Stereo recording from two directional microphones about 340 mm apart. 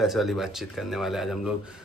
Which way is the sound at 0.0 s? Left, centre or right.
Centre.